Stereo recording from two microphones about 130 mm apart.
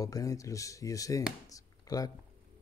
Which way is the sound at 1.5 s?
30° left (ahead or behind).